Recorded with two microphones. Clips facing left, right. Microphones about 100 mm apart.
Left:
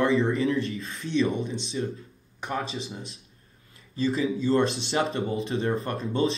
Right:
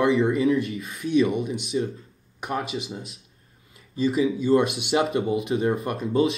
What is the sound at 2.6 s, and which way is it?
Speech, 30° left (ahead or behind).